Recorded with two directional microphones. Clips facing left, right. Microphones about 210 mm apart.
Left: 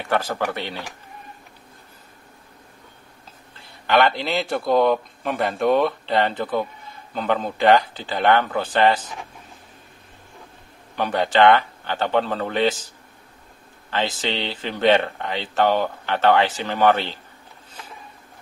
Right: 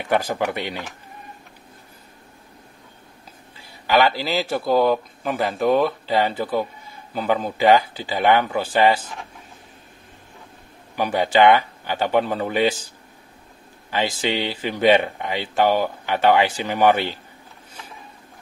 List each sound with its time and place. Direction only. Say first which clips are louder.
0.0 s speech: right 2 dB; 15° right (ahead or behind)
3.5 s speech: even; 5° right (ahead or behind)
11.0 s speech: right 1 dB; 10° right (ahead or behind)
13.8 s speech: right 2 dB; 10° right (ahead or behind)